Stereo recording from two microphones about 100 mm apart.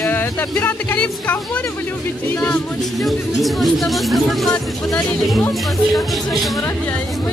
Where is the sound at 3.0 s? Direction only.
Centre (ahead or behind).